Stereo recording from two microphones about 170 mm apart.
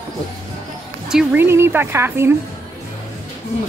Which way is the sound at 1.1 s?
5° right (ahead or behind).